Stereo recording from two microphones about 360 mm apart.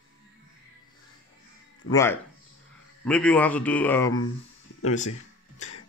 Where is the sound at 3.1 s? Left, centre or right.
Centre.